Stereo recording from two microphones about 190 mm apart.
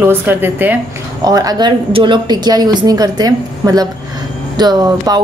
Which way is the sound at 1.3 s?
20° right (ahead or behind).